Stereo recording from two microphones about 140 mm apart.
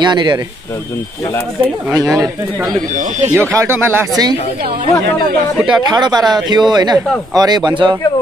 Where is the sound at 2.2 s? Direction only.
25° right (ahead or behind).